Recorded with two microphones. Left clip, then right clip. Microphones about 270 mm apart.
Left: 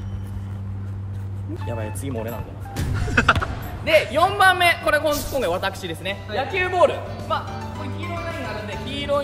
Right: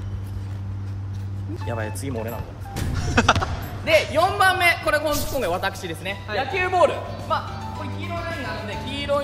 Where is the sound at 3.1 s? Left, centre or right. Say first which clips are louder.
Left 1 dB; centre.